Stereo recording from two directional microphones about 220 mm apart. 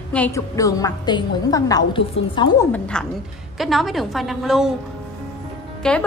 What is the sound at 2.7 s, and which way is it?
A woman's voice, 5° left (ahead or behind).